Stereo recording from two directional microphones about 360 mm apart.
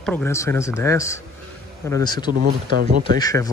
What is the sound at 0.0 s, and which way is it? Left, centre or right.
A man's voice, centre.